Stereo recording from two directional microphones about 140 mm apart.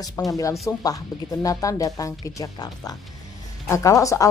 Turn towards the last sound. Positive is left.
turn(degrees=25)  # may be behind; listen again after turning